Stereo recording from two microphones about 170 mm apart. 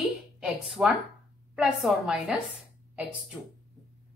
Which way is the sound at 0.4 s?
Centre (ahead or behind).